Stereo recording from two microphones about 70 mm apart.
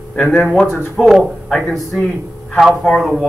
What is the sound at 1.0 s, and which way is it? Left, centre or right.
Speech, centre.